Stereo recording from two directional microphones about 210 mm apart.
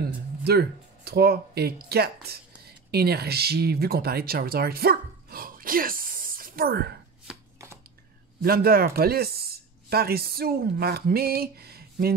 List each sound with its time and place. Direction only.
0.4 s speech: 50° right (ahead or behind)
7.2 s chopping: 10° right (ahead or behind)
8.4 s speech: 45° right (ahead or behind)